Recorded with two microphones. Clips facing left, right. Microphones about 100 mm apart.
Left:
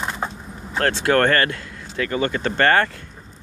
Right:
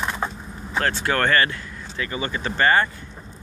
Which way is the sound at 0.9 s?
75° left (ahead or behind).